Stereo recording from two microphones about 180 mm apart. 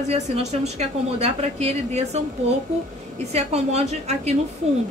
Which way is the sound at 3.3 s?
35° right (ahead or behind).